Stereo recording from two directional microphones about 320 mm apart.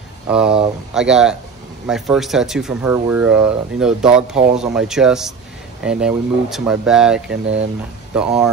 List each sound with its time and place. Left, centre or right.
0.3 s speech: centre